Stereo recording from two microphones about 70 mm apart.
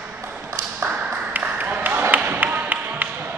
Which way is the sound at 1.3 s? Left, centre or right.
Right.